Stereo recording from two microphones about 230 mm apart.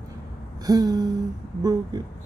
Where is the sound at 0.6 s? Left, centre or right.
Centre.